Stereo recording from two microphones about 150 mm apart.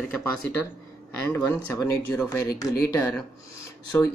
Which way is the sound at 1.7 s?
20° left (ahead or behind).